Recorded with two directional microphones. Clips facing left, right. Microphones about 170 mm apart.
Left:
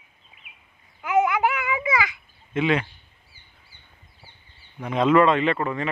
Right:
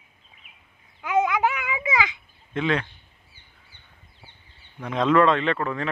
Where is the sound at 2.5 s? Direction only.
5° left (ahead or behind).